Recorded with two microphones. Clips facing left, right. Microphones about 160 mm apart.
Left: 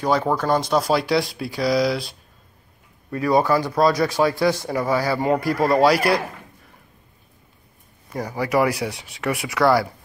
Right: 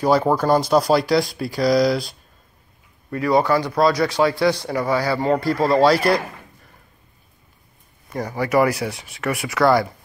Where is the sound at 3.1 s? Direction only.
15° left (ahead or behind).